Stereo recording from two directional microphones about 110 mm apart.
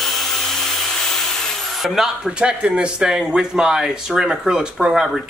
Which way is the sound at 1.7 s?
Centre (ahead or behind).